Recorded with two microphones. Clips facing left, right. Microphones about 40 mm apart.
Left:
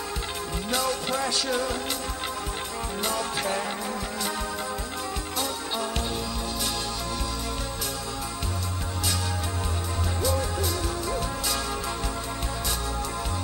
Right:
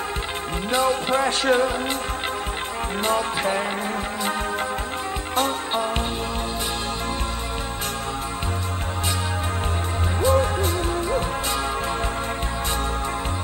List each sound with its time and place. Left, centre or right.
0.7 s speech: right
3.0 s music: right
5.3 s music: right
10.2 s music: right